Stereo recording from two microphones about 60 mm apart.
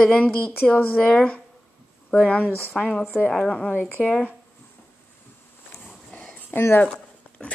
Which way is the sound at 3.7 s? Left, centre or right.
Left.